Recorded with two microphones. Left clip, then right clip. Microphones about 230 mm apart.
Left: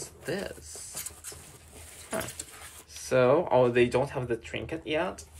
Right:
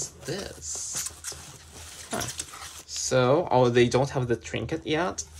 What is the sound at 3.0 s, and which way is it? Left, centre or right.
Speech, centre.